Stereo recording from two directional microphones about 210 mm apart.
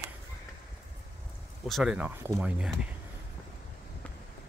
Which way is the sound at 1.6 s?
Centre (ahead or behind).